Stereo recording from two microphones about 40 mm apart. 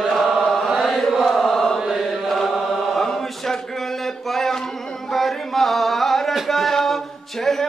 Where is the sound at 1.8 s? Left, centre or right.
Centre.